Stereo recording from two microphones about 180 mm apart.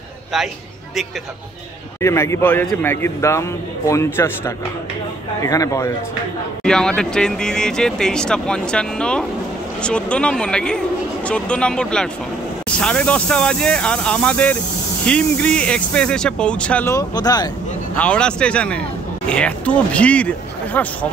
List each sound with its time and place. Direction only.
2.0 s a man's voice: 15° left (ahead or behind)
6.6 s speech: 5° left (ahead or behind)
16.9 s speech: 20° left (ahead or behind)
17.9 s a man's voice: 5° left (ahead or behind)